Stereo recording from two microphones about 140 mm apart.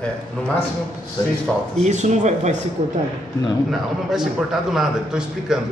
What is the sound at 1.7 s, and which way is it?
Speech, 55° right (ahead or behind).